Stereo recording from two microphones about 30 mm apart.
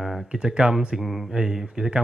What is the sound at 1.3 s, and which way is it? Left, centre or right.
Speech, centre.